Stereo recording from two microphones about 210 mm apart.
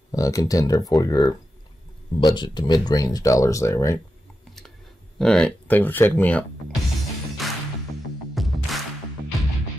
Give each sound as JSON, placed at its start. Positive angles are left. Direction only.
{"t": 0.1, "sound": "speech", "side_deg": 15}
{"t": 5.2, "sound": "speech", "side_deg": 5}
{"t": 7.4, "sound": "music", "side_deg": 0}